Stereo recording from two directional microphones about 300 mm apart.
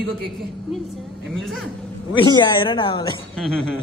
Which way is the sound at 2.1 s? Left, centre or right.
Centre.